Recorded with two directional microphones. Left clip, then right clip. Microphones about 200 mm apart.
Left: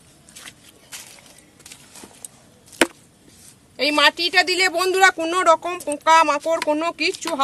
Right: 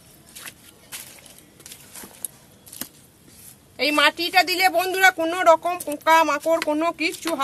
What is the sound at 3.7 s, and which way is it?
Speech, 40° left (ahead or behind).